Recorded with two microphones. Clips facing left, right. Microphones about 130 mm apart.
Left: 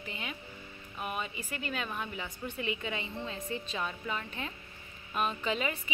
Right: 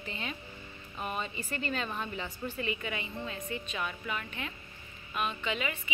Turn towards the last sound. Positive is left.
turn(degrees=35)  # may be behind; listen again after turning